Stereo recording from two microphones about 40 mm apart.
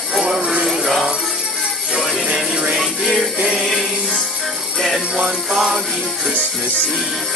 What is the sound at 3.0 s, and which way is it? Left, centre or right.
Music, centre.